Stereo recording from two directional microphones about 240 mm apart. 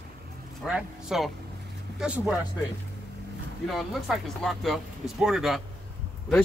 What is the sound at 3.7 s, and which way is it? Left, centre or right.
Speech, centre.